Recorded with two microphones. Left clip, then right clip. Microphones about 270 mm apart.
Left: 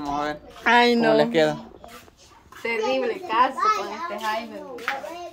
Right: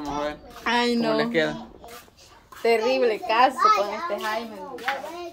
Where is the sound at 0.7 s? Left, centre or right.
Centre.